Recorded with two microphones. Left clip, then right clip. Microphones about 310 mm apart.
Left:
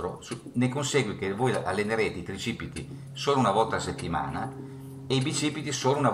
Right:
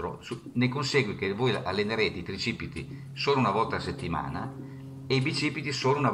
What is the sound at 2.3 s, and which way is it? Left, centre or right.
Speech, left.